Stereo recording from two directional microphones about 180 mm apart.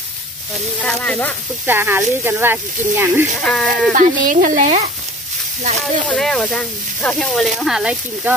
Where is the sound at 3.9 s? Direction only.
45° right (ahead or behind).